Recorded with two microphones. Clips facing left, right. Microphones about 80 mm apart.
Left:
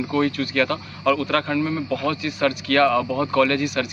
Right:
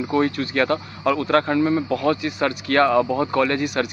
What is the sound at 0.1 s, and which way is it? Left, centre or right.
Speech, right.